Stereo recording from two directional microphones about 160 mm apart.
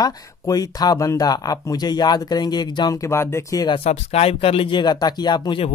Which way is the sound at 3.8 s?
40° left (ahead or behind).